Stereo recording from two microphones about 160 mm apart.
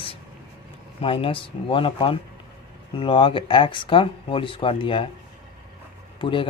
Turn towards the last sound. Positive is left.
turn(degrees=35)  # may be behind; listen again after turning